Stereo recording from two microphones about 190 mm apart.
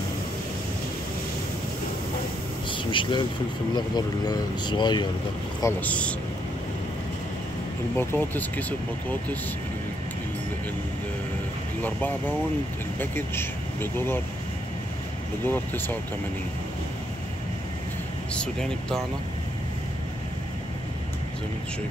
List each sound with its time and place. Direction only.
2.7 s speech: 25° left (ahead or behind)
5.6 s speech: 10° left (ahead or behind)
8.0 s speech: 10° left (ahead or behind)
13.0 s speech: 10° left (ahead or behind)
15.4 s speech: 10° left (ahead or behind)
18.3 s speech: 5° left (ahead or behind)